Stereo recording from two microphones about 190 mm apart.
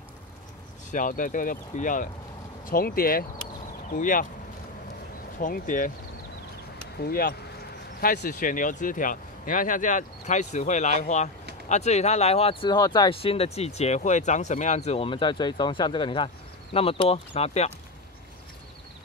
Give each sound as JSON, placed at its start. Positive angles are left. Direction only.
{"t": 0.9, "sound": "speech", "side_deg": 45}
{"t": 5.4, "sound": "speech", "side_deg": 45}
{"t": 7.0, "sound": "speech", "side_deg": 50}